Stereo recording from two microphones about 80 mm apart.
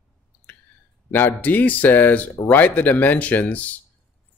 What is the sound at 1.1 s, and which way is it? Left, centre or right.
Speech, left.